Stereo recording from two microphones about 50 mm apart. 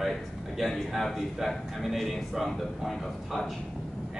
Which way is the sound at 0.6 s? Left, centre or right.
Centre.